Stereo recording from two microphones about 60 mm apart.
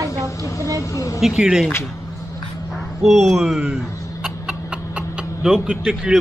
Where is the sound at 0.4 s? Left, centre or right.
Left.